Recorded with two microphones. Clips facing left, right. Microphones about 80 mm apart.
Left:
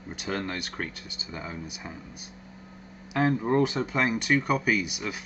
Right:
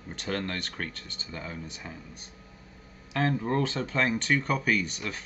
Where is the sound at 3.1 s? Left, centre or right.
Centre.